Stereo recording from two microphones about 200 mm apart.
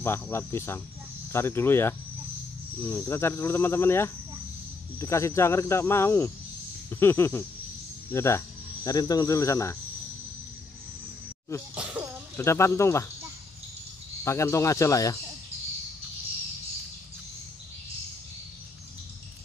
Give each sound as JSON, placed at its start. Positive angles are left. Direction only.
{"t": 0.0, "sound": "speech", "side_deg": 10}
{"t": 11.7, "sound": "a sound", "side_deg": -5}
{"t": 12.4, "sound": "speech", "side_deg": 15}
{"t": 14.2, "sound": "speech", "side_deg": 15}